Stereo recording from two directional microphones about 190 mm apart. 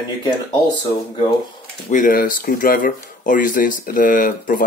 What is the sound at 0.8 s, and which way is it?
Speech, 25° left (ahead or behind).